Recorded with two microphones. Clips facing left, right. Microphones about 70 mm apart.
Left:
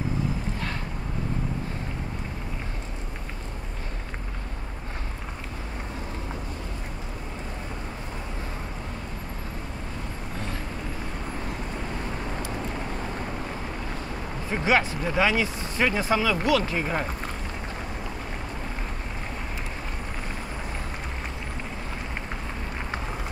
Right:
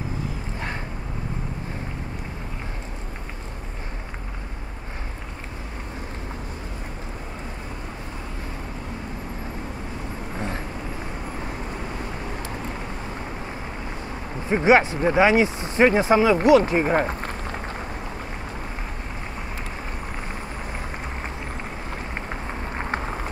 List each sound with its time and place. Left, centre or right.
14.5 s speech: right
16.9 s speech: right
22.8 s a sound: right